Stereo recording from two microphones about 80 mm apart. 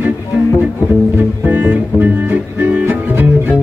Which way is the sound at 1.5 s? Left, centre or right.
Centre.